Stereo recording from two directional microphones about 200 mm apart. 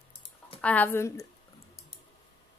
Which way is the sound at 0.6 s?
10° left (ahead or behind).